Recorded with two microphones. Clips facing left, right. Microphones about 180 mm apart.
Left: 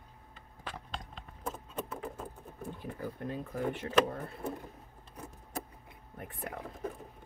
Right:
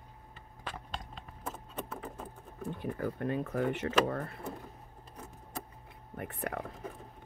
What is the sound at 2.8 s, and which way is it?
Speech, 65° right (ahead or behind).